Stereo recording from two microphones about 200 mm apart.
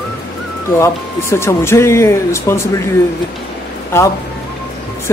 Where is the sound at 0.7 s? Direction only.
15° left (ahead or behind).